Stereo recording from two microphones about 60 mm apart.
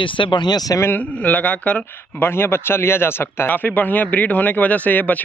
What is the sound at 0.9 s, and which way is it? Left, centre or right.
Speech, left.